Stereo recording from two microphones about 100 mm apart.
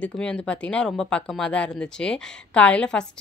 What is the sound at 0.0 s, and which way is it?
Speech, 10° left (ahead or behind).